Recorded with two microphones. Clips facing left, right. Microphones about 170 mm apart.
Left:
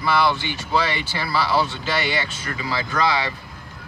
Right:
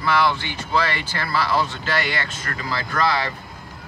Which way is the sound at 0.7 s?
5° left (ahead or behind).